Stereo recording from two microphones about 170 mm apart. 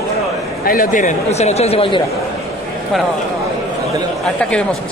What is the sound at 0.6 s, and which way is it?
Speech, 60° left (ahead or behind).